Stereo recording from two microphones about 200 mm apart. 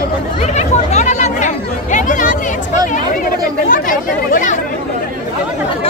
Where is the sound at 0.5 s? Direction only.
35° left (ahead or behind).